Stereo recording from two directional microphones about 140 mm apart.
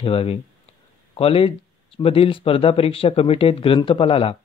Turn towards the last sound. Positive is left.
turn(degrees=40)  # may be behind; listen again after turning